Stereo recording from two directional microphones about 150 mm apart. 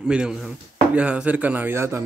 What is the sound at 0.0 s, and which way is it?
Speech, 5° right (ahead or behind).